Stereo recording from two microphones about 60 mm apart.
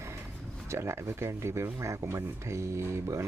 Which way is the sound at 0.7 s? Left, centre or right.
Right.